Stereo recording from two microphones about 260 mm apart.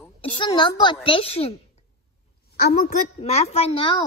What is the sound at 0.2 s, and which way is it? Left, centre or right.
A woman's voice, centre.